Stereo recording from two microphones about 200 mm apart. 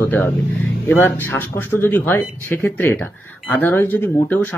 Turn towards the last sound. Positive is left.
turn(degrees=10)  # may be behind; listen again after turning